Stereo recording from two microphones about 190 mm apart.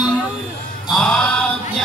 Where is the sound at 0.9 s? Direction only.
5° left (ahead or behind).